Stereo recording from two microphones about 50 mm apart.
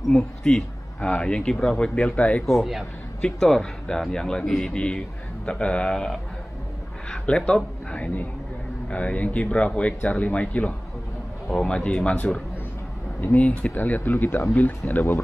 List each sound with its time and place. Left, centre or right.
0.1 s speech: centre
2.4 s speech: centre
3.2 s speech: centre
4.5 s speech: centre
4.7 s speech: centre
7.2 s speech: centre
13.4 s speech: left